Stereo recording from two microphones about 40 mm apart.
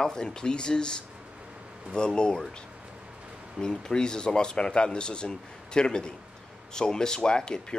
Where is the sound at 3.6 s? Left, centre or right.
Left.